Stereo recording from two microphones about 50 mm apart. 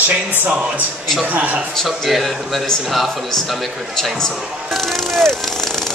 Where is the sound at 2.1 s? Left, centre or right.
Centre.